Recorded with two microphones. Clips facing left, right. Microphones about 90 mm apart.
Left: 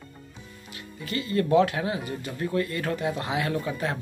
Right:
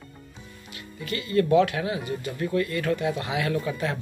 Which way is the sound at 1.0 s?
30° left (ahead or behind).